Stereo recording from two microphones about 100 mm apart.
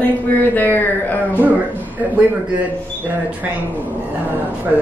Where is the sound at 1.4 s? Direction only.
15° right (ahead or behind).